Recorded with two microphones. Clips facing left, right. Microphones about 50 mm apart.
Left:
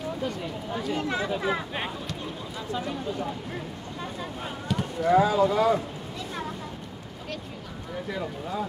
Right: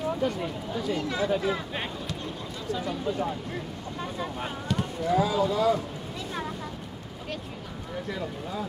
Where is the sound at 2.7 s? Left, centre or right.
Left.